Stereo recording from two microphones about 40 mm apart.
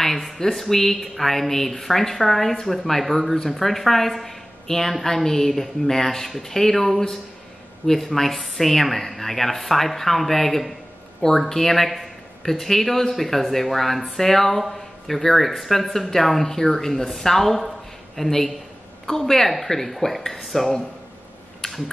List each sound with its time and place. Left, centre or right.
0.0 s speech: centre